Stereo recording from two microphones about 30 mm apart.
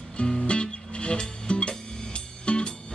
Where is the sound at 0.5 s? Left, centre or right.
Left.